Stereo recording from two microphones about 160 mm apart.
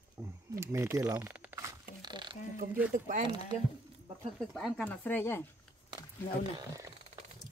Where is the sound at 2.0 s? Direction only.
30° right (ahead or behind).